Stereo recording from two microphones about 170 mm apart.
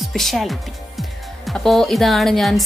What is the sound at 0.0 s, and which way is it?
A woman's voice, centre (ahead or behind).